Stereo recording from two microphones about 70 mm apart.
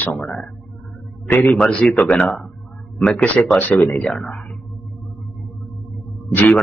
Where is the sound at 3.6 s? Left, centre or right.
Left.